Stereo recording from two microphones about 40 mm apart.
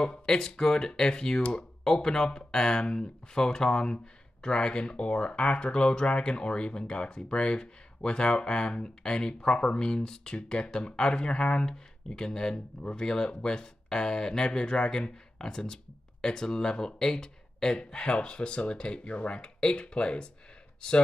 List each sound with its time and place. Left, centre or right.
0.0 s speech: centre